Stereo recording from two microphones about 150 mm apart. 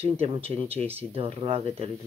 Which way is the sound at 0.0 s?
40° right (ahead or behind).